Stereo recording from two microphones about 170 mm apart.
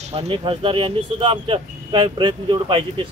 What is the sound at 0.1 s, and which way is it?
Speech, 35° right (ahead or behind).